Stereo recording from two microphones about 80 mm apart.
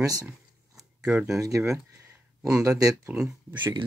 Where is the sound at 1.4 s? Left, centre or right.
Right.